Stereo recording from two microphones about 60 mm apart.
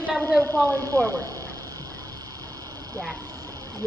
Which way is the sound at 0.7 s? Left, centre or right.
Right.